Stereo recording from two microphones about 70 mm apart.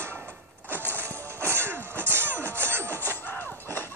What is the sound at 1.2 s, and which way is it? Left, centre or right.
Music, right.